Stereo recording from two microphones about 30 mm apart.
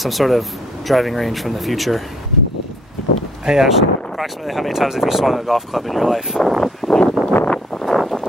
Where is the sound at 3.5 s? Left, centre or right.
Centre.